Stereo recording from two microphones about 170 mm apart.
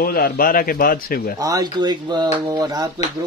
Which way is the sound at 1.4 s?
20° right (ahead or behind).